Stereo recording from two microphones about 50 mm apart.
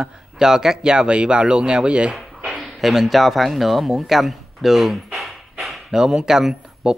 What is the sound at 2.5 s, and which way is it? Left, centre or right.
Speech, centre.